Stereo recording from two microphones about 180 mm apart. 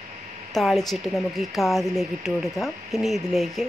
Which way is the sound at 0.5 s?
Centre (ahead or behind).